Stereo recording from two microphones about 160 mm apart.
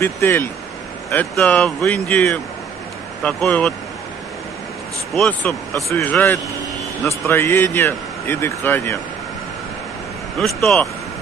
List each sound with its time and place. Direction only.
0.0 s speech: 15° left (ahead or behind)
5.1 s speech: 5° left (ahead or behind)
5.9 s speech: 20° left (ahead or behind)
10.3 s speech: centre (ahead or behind)